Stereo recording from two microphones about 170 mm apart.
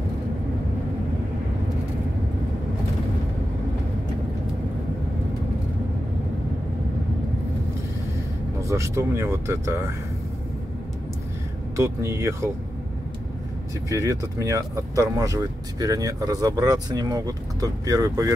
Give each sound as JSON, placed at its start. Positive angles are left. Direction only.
{"t": 8.6, "sound": "speech", "side_deg": -15}
{"t": 11.7, "sound": "speech", "side_deg": -15}
{"t": 13.8, "sound": "speech", "side_deg": -20}